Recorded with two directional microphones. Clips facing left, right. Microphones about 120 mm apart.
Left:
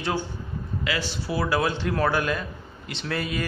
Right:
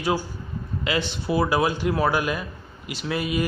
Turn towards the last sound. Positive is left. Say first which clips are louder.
# right 3 dB
turn(degrees=-10)  # may be behind; listen again after turning